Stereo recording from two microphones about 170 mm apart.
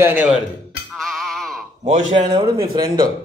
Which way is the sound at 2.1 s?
30° right (ahead or behind).